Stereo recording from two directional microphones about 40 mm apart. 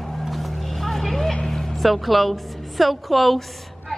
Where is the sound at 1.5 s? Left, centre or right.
Centre.